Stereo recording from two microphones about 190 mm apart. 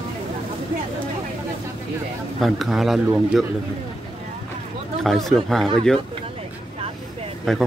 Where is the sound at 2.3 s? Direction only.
Centre (ahead or behind).